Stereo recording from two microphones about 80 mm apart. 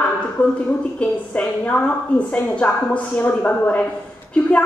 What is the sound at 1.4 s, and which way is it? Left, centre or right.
Speech, centre.